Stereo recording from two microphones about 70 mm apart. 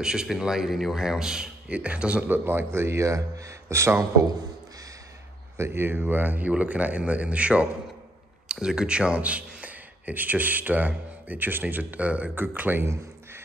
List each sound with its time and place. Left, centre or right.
0.0 s a man's voice: centre
2.2 s a man's voice: right
5.6 s a man's voice: right
12.8 s a sound: right